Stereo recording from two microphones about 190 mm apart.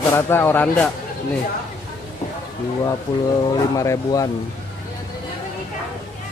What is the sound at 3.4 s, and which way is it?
Speech, 15° left (ahead or behind).